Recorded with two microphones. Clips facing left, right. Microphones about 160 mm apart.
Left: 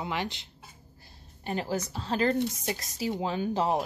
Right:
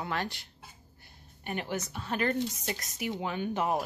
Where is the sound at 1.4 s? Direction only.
30° left (ahead or behind).